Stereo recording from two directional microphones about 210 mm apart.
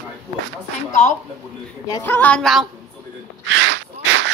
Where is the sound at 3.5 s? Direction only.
55° right (ahead or behind).